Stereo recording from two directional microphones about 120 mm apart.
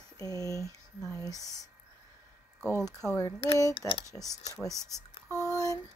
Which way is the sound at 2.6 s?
20° right (ahead or behind).